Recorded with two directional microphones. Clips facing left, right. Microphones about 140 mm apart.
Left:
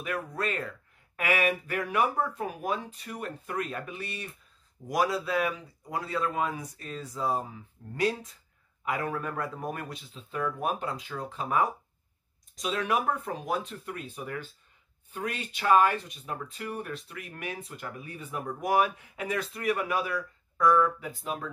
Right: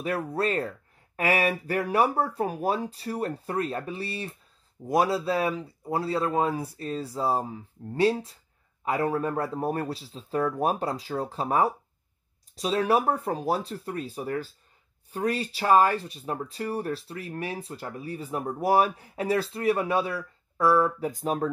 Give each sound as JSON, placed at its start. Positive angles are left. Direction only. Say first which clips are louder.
{"t": 0.0, "sound": "speech", "louder": "right 5 dB", "side_deg": -30}